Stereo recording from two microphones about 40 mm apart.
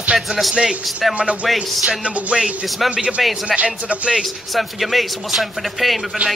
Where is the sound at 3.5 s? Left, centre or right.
Right.